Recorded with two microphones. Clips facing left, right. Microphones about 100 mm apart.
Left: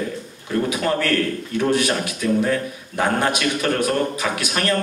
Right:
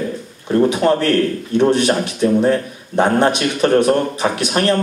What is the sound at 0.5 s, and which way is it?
A man's voice, 25° right (ahead or behind).